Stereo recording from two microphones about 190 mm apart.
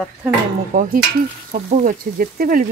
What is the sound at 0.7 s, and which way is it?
Speech, 45° right (ahead or behind).